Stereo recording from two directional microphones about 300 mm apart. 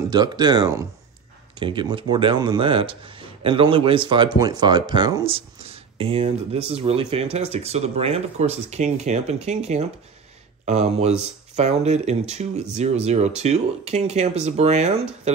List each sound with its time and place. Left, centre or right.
0.1 s speech: centre